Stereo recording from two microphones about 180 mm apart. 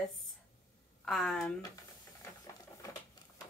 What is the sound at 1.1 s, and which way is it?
Speech, centre (ahead or behind).